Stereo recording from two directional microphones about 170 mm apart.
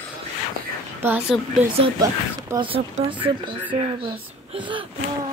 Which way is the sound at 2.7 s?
35° right (ahead or behind).